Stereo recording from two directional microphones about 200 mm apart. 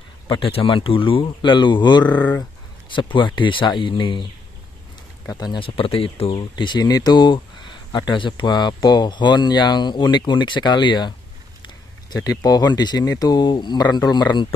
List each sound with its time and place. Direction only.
0.3 s speech: 30° left (ahead or behind)
2.0 s speech: 10° left (ahead or behind)
2.9 s speech: 25° left (ahead or behind)